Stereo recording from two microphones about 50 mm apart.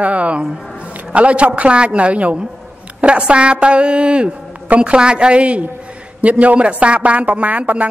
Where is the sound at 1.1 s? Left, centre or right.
Right.